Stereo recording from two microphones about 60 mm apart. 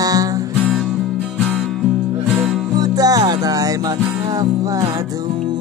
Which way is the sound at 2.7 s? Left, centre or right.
Right.